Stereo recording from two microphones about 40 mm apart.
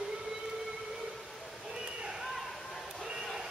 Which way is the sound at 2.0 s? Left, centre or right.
Centre.